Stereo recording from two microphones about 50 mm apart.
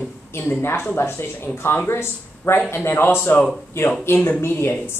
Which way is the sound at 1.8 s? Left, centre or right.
Left.